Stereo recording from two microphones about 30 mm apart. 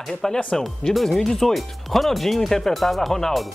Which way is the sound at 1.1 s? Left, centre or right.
Centre.